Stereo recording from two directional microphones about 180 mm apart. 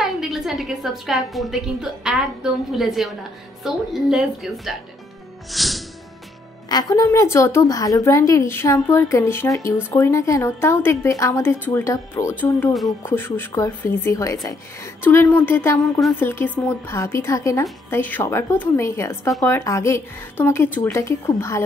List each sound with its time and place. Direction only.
0.0 s a woman's voice: centre (ahead or behind)
5.5 s music: centre (ahead or behind)
6.7 s a woman's voice: 20° left (ahead or behind)